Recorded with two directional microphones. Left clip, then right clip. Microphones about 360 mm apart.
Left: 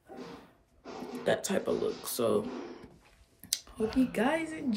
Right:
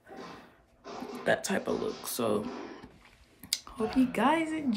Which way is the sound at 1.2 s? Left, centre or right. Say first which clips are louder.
Right 1 dB; centre.